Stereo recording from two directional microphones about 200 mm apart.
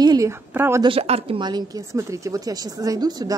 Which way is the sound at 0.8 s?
30° right (ahead or behind).